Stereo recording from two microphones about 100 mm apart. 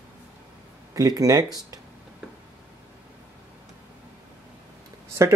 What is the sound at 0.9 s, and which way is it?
Speech, 40° right (ahead or behind).